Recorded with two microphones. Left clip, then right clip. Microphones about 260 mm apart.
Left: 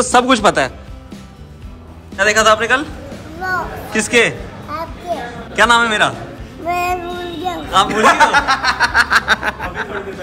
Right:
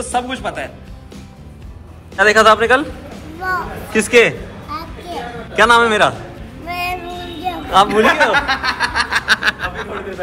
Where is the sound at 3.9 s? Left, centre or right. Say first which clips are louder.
Right 2 dB; centre.